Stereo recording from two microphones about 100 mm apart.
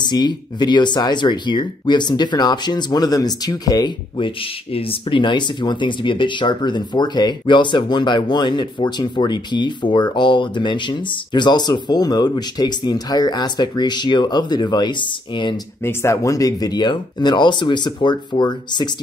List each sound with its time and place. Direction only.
0.0 s speech: 45° left (ahead or behind)
4.2 s speech: 65° left (ahead or behind)
15.8 s speech: 25° left (ahead or behind); by 18.9 s 50° left (ahead or behind)